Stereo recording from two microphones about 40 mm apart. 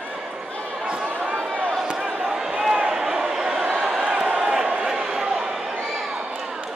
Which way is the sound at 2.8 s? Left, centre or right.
Centre.